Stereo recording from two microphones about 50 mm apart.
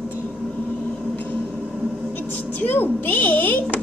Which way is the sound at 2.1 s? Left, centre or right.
Left.